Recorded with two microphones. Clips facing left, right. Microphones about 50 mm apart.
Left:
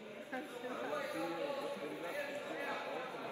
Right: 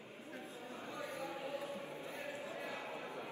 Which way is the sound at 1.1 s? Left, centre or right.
Left.